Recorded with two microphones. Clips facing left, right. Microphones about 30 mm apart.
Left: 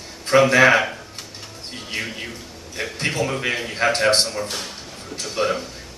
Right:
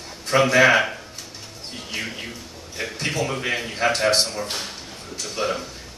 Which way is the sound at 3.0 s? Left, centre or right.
Centre.